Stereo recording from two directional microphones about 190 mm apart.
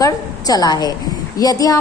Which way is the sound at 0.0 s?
20° left (ahead or behind).